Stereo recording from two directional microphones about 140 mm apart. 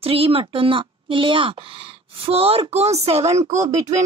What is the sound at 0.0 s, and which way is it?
A woman's voice, 40° right (ahead or behind).